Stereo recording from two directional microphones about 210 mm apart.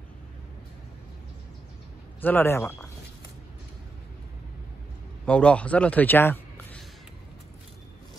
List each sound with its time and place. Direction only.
2.2 s speech: 10° left (ahead or behind)
5.2 s speech: 5° left (ahead or behind)